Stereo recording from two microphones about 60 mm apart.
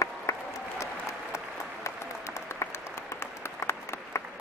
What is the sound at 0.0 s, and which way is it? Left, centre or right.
Applause, left.